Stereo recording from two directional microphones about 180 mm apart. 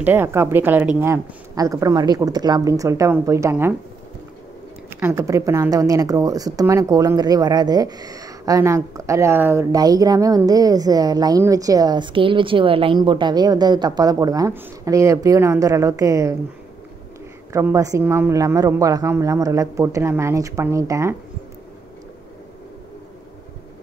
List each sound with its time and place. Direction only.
0.0 s a woman's voice: 10° right (ahead or behind)
4.8 s a woman's voice: 15° right (ahead or behind)
17.5 s a woman's voice: 15° right (ahead or behind)